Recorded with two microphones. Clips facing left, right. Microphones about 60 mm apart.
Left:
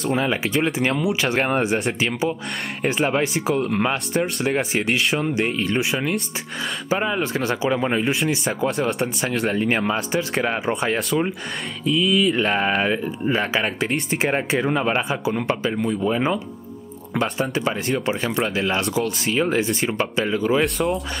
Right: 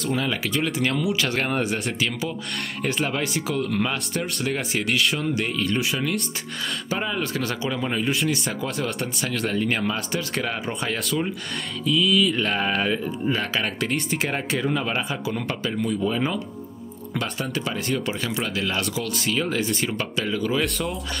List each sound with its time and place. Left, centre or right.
0.1 s speech: left
9.9 s speech: centre
10.4 s speech: left
11.8 s speech: centre
20.6 s speech: centre